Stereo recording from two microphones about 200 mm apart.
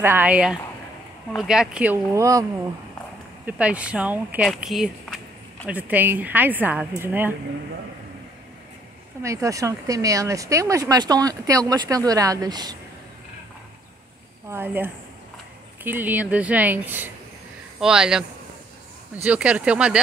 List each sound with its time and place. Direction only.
0.0 s speech: 10° right (ahead or behind)
3.4 s speech: 5° right (ahead or behind)
9.2 s speech: 15° right (ahead or behind)
14.5 s speech: 10° right (ahead or behind)
19.2 s speech: 5° right (ahead or behind)